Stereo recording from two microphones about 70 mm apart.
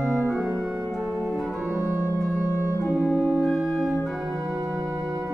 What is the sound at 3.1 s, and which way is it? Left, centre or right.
Organ, left.